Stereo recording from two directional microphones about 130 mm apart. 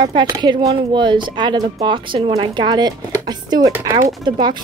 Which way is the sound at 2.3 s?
35° right (ahead or behind).